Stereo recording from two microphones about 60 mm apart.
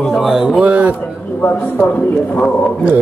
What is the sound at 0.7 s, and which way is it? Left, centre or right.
Speech, right.